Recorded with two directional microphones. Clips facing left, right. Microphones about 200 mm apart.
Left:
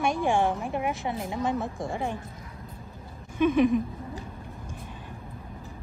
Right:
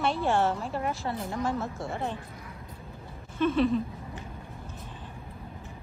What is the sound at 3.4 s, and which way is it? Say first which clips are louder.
Speech: left 3 dB; 15° left (ahead or behind).